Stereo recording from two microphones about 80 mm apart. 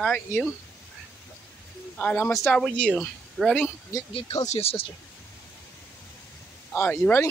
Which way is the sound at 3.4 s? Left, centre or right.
Centre.